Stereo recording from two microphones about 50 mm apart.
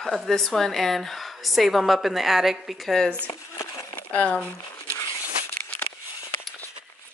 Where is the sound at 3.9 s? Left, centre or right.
Left.